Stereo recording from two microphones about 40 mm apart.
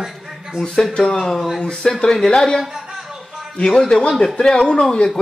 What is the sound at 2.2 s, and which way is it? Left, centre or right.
Speech, centre.